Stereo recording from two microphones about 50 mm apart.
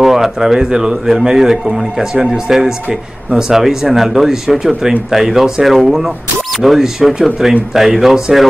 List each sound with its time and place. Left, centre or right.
0.0 s speech: centre